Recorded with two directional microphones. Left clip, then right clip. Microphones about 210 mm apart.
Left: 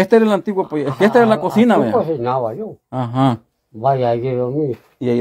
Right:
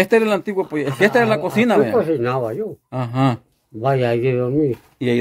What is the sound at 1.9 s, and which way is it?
Speech, 30° right (ahead or behind).